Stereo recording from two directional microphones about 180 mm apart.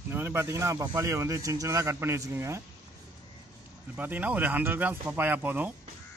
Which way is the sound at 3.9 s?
10° right (ahead or behind).